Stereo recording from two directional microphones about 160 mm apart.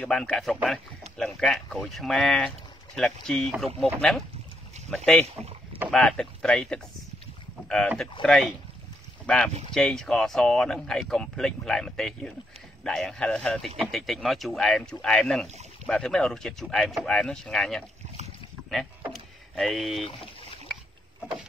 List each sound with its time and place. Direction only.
0.0 s speech: 5° left (ahead or behind)
5.2 s speech: 40° right (ahead or behind)
5.9 s speech: 5° left (ahead or behind)
15.4 s rowboat: 45° right (ahead or behind)
15.9 s speech: 5° left (ahead or behind)
19.1 s vehicle: centre (ahead or behind)